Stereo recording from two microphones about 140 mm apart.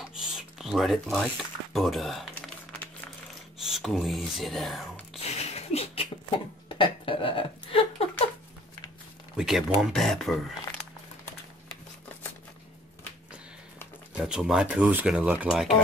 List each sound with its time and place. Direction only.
0.0 s speech: 5° right (ahead or behind)
3.5 s speech: centre (ahead or behind)
5.2 s a sound: 50° left (ahead or behind)
9.4 s speech: 5° right (ahead or behind)
14.1 s speech: 5° right (ahead or behind)